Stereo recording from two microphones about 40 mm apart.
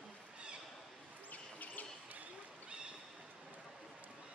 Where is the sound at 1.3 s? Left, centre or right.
Left.